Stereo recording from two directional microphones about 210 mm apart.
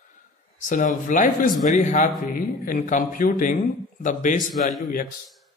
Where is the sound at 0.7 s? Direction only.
40° left (ahead or behind).